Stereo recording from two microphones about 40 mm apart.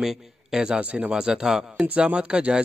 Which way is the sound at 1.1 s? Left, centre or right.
Centre.